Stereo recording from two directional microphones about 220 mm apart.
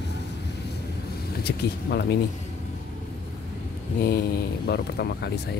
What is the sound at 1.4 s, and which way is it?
Speech, 50° left (ahead or behind).